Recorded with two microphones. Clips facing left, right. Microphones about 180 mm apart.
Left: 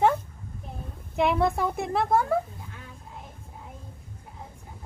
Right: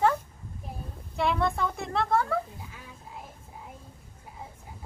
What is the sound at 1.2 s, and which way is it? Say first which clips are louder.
A woman's voice: left 3 dB; 20° left (ahead or behind).